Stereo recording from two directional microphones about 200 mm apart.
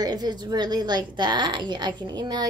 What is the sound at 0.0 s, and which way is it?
A woman's voice, 20° right (ahead or behind).